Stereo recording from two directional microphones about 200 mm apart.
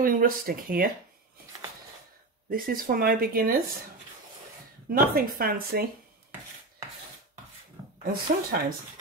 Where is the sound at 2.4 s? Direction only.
45° right (ahead or behind).